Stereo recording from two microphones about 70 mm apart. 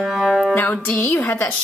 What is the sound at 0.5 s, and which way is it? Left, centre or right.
Music, left.